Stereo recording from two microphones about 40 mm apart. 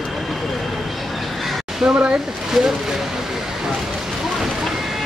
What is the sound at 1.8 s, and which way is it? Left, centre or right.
Speech, centre.